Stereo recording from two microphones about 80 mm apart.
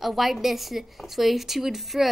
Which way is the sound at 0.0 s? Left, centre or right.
Centre.